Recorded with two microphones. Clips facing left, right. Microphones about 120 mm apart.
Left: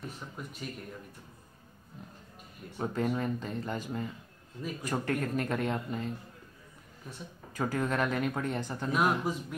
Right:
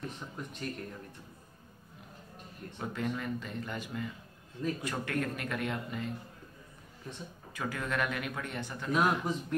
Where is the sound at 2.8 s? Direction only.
40° left (ahead or behind).